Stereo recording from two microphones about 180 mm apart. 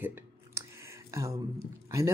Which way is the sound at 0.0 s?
15° right (ahead or behind).